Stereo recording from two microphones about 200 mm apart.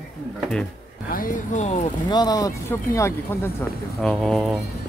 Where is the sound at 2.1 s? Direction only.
20° left (ahead or behind).